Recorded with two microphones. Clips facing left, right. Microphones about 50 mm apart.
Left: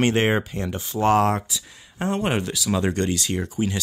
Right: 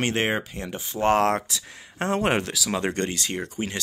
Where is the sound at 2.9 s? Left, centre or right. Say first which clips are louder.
Left 3 dB; right.